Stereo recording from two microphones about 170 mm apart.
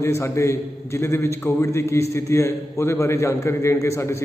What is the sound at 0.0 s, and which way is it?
A man's voice, 15° left (ahead or behind).